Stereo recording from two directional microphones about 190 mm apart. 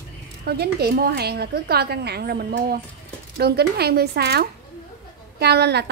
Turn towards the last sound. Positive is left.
turn(degrees=-60)  # may be behind; listen again after turning